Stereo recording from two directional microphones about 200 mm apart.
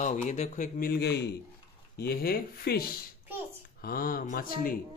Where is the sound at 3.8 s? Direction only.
45° left (ahead or behind).